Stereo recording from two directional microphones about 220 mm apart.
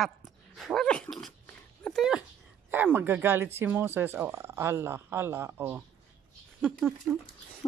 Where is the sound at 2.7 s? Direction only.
10° right (ahead or behind).